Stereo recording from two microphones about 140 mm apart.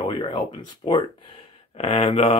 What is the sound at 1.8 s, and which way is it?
Speech, 45° left (ahead or behind).